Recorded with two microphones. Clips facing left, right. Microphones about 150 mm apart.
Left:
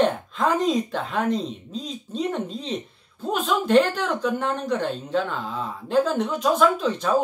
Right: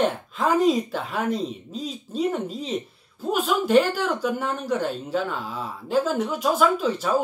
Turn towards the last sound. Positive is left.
turn(degrees=-5)  # may be behind; listen again after turning